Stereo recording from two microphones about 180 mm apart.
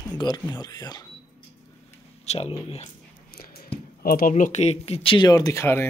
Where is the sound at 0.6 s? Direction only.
20° left (ahead or behind).